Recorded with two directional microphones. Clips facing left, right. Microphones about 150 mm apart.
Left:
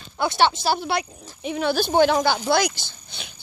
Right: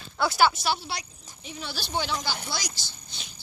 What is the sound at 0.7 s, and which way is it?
Speech, 55° left (ahead or behind).